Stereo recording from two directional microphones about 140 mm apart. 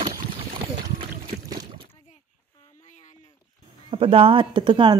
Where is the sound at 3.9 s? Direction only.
40° right (ahead or behind).